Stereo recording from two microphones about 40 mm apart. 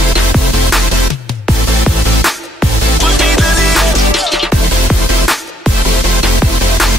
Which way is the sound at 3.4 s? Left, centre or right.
Centre.